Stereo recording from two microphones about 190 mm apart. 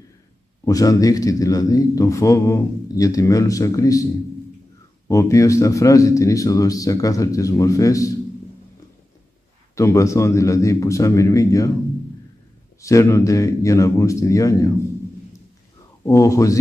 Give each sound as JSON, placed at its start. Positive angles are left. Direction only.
{"t": 0.7, "sound": "a man's voice", "side_deg": 20}
{"t": 9.8, "sound": "a man's voice", "side_deg": 15}
{"t": 12.8, "sound": "a man's voice", "side_deg": 15}
{"t": 16.0, "sound": "a man's voice", "side_deg": 15}